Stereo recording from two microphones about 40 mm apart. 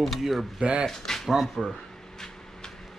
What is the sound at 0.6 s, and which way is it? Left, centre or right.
Speech, right.